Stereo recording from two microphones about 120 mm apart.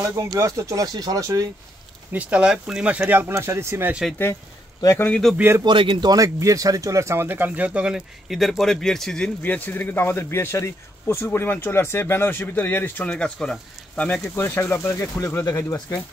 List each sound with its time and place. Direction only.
0.0 s speech: 25° right (ahead or behind)
2.1 s speech: 10° right (ahead or behind)
4.8 s speech: 15° left (ahead or behind)
5.6 s speech: 40° right (ahead or behind); by 14.3 s 10° left (ahead or behind)
14.3 s speech: 20° left (ahead or behind)